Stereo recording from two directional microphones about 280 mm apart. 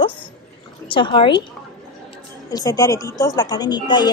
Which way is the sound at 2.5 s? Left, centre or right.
Centre.